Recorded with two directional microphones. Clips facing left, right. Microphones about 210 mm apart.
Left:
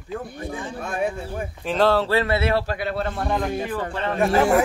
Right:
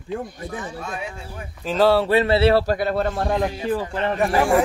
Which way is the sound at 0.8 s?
55° left (ahead or behind).